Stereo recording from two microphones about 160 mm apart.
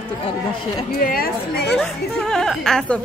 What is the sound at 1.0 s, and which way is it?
Speech, 65° left (ahead or behind).